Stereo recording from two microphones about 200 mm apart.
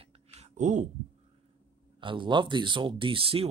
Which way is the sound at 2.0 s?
25° right (ahead or behind).